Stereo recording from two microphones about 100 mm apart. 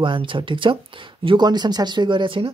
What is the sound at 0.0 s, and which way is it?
Speech, 55° right (ahead or behind).